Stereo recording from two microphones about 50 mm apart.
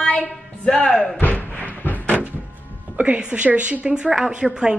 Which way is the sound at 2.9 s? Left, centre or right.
Right.